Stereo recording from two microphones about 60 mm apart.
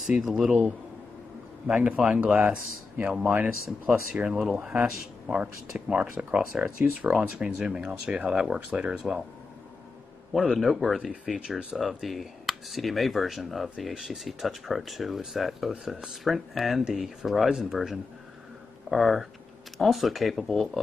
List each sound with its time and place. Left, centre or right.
0.2 s speech: centre
1.7 s a man's voice: right
10.5 s speech: centre
11.2 s speech: centre
18.9 s speech: centre